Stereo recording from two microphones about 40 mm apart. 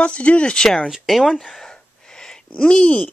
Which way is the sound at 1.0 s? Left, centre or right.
Centre.